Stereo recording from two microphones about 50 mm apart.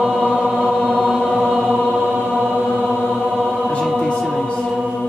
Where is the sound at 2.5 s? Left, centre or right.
Right.